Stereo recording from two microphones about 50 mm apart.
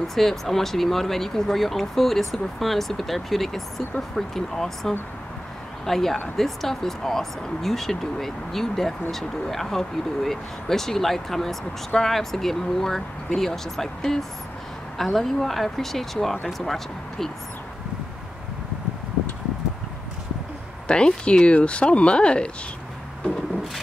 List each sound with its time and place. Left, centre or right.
0.1 s speech: centre
20.8 s speech: centre